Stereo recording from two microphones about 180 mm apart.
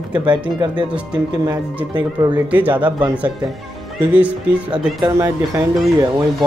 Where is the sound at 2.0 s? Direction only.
20° right (ahead or behind).